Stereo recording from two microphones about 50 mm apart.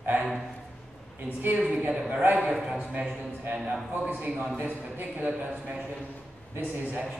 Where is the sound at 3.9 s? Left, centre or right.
Right.